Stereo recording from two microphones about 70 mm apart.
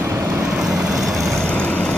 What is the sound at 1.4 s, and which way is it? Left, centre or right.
Vehicle, centre.